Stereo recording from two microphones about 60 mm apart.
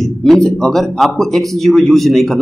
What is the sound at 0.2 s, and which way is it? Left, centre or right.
Speech, centre.